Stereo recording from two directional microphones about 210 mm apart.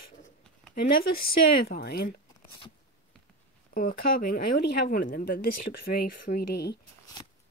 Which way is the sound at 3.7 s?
45° left (ahead or behind).